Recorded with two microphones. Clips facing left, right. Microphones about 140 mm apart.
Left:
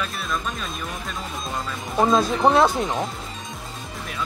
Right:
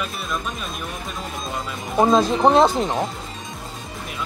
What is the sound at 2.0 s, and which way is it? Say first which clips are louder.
Speech: right 3 dB; 20° right (ahead or behind).